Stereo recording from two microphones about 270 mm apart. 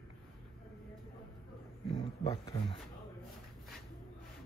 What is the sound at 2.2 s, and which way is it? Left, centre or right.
Speech, centre.